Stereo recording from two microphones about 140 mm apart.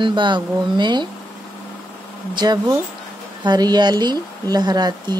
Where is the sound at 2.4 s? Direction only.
30° right (ahead or behind).